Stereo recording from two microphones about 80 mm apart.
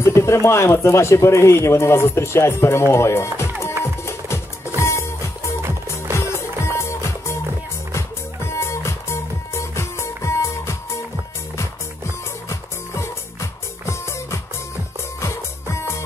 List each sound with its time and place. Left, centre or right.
0.0 s speech: left
3.8 s music: left
8.5 s music: left
12.4 s music: left